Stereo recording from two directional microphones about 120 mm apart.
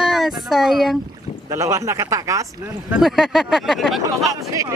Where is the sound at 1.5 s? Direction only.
25° right (ahead or behind).